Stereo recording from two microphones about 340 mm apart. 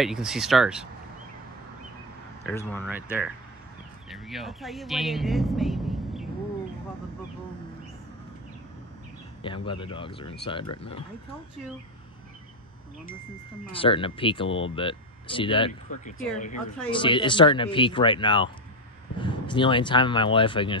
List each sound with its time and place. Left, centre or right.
0.0 s speech: centre
2.4 s speech: centre
9.4 s speech: centre
13.7 s speech: centre